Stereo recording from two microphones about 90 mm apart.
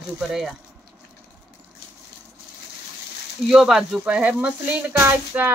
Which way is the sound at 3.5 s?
5° right (ahead or behind).